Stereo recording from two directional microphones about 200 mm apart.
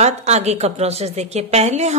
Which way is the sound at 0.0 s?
35° right (ahead or behind).